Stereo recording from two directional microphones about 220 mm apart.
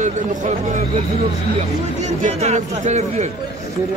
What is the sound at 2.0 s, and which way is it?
Speech, 30° right (ahead or behind).